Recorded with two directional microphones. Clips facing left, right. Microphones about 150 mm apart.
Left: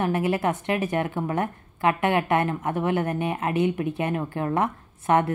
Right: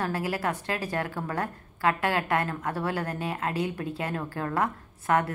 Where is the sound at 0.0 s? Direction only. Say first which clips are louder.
Left 5 dB; 20° left (ahead or behind).